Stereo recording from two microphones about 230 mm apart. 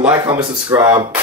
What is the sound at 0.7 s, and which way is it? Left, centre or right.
Speech, centre.